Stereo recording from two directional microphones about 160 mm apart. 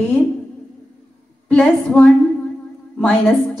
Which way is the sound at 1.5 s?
5° left (ahead or behind).